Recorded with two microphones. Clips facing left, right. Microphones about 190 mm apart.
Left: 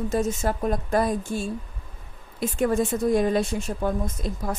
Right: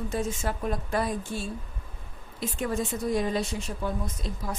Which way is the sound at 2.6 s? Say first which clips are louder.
Left 7 dB; 50° left (ahead or behind).